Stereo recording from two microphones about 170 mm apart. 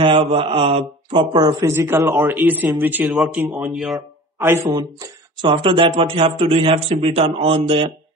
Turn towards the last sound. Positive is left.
turn(degrees=-35)  # may be behind; listen again after turning